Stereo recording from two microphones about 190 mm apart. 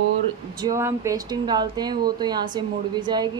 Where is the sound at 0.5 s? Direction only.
15° right (ahead or behind).